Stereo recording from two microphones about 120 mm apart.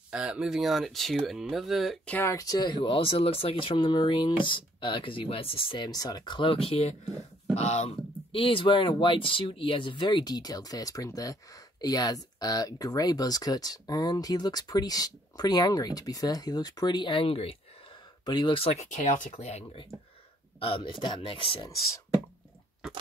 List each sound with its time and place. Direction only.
0.1 s speech: 10° right (ahead or behind)
2.0 s speech: 15° left (ahead or behind)
2.3 s speech: 30° left (ahead or behind); by 5.9 s 50° left (ahead or behind)
5.9 s speech: 30° left (ahead or behind); by 7.9 s 65° left (ahead or behind)
8.3 s speech: 45° left (ahead or behind)
18.2 s speech: 40° left (ahead or behind); by 19.2 s 90° left
19.4 s speech: 65° left (ahead or behind)
20.5 s speech: 50° left (ahead or behind)